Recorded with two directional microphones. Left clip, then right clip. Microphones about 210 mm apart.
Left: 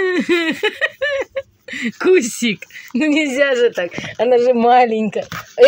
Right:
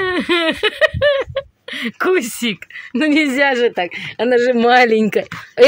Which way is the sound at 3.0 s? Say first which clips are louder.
Right 1 dB; 25° right (ahead or behind).